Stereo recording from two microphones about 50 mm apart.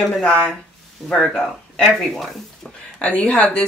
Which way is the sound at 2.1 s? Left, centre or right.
Centre.